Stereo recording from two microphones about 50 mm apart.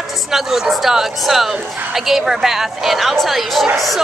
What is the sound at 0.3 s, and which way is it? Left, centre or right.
Speech, centre.